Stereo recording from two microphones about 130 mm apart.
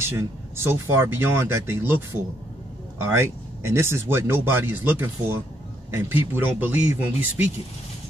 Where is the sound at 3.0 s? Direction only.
20° right (ahead or behind).